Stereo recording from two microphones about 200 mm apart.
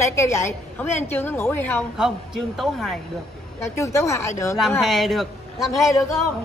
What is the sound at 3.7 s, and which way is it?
Speech, 15° left (ahead or behind).